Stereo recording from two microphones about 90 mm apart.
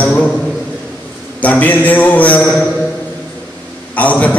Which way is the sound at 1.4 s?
20° left (ahead or behind).